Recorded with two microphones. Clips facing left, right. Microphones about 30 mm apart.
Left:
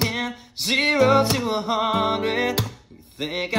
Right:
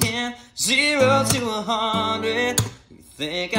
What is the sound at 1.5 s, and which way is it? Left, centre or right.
Music, left.